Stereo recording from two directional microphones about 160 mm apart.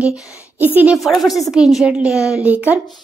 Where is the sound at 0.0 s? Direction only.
5° right (ahead or behind).